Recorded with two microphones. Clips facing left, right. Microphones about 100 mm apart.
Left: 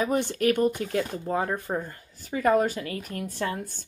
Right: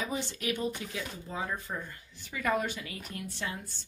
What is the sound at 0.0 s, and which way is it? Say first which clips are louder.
Speech: left 10 dB; 55° left (ahead or behind).